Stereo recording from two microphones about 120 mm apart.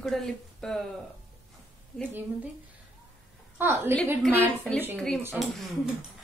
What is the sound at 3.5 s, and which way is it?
Speech, 20° right (ahead or behind).